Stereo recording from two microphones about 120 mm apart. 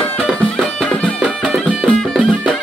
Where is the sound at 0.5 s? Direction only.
5° left (ahead or behind).